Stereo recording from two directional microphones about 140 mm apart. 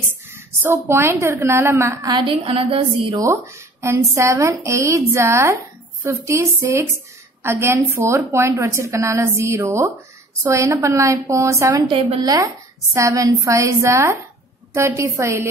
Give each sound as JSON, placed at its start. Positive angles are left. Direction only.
{"t": 0.3, "sound": "a woman's voice", "side_deg": -20}
{"t": 3.2, "sound": "a woman's voice", "side_deg": -20}